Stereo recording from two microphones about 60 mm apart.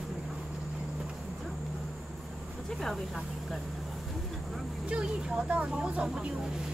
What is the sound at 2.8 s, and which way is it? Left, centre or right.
Speech, centre.